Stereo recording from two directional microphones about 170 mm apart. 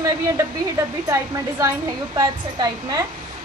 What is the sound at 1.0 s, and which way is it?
A woman's voice, 20° right (ahead or behind).